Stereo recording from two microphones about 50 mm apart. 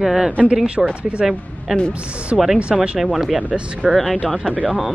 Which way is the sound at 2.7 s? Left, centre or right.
Centre.